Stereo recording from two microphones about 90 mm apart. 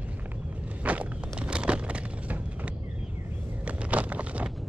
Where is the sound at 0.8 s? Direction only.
15° right (ahead or behind).